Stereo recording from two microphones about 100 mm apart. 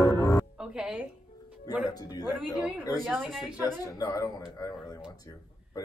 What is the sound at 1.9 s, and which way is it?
Speech, 40° left (ahead or behind).